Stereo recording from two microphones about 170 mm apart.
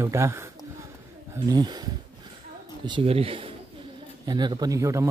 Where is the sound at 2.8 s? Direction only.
30° right (ahead or behind).